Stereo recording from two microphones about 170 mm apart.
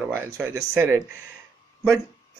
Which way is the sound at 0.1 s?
15° right (ahead or behind).